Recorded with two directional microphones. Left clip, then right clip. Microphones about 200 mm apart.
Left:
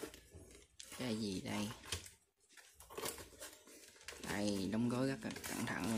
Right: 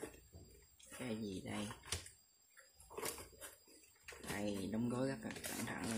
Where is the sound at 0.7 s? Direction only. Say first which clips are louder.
Left 3 dB; 15° left (ahead or behind).